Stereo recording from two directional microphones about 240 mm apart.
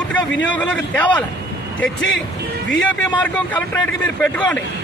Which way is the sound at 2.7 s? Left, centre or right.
Centre.